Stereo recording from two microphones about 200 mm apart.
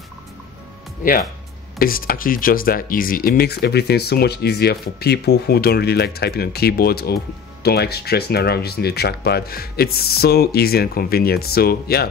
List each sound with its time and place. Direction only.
1.8 s speech: 45° left (ahead or behind)